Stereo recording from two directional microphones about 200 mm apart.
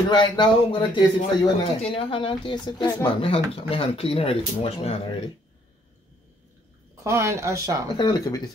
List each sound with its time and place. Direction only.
0.1 s a man's voice: 25° left (ahead or behind)
7.0 s speech: 15° right (ahead or behind)
7.9 s a man's voice: 20° left (ahead or behind)